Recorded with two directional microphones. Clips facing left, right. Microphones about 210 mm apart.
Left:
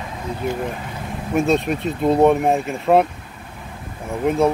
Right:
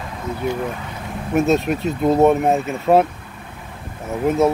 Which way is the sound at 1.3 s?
Centre (ahead or behind).